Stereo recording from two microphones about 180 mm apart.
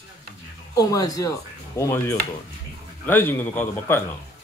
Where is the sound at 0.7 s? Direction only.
20° left (ahead or behind).